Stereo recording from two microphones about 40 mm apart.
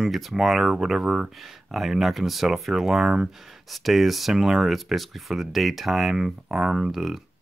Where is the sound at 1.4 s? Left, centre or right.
Centre.